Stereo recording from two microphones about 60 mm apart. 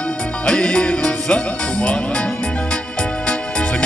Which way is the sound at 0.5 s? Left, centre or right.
Centre.